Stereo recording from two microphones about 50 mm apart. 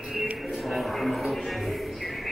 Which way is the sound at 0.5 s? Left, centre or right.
Centre.